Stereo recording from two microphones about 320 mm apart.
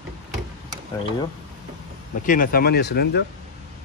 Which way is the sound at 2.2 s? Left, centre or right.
Left.